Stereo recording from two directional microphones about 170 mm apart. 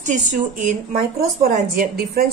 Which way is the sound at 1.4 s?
65° right (ahead or behind).